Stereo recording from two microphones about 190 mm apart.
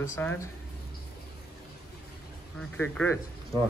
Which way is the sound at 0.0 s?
10° left (ahead or behind).